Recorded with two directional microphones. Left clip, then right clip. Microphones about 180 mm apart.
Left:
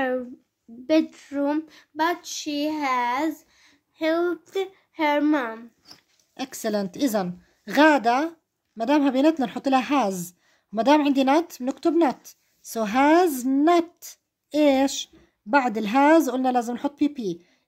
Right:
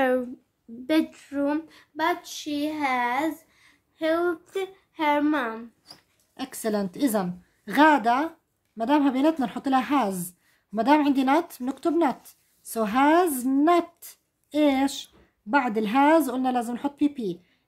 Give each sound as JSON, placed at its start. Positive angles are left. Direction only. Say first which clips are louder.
{"t": 1.1, "sound": "child singing", "louder": "left 2 dB", "side_deg": 45}
{"t": 6.3, "sound": "speech", "louder": "left 1 dB", "side_deg": 35}